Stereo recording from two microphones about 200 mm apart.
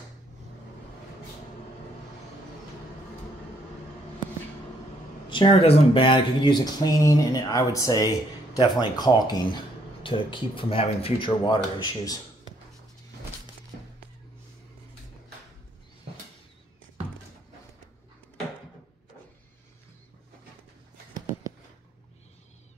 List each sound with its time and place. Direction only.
5.3 s speech: 30° left (ahead or behind)